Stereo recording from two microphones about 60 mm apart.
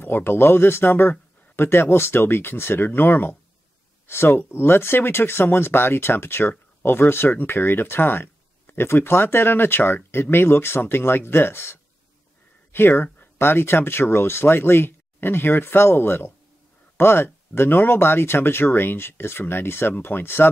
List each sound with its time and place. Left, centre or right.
0.0 s speech: left